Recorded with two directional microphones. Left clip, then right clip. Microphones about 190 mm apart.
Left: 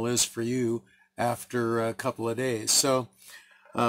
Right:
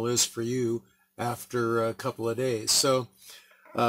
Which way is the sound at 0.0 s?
30° left (ahead or behind).